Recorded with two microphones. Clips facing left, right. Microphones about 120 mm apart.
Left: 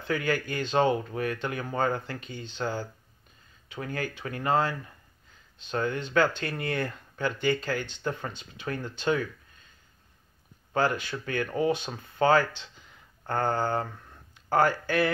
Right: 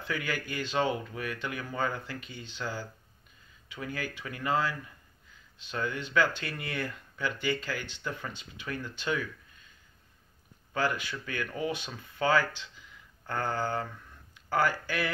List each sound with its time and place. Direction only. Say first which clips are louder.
0.1 s speech: left 6 dB; 40° left (ahead or behind)
2.2 s speech: left 5 dB; 10° right (ahead or behind)
2.5 s a sound: left 5 dB; 45° left (ahead or behind)
3.7 s speech: left 3 dB; 40° left (ahead or behind)
10.7 s speech: left 4 dB; 40° left (ahead or behind)
13.3 s a sound: left 4 dB; 50° left (ahead or behind)